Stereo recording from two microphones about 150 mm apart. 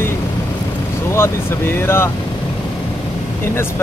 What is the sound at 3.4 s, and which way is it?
Speech, 15° left (ahead or behind).